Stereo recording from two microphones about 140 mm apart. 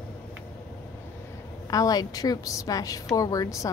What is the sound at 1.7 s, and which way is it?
A woman's voice, 25° left (ahead or behind).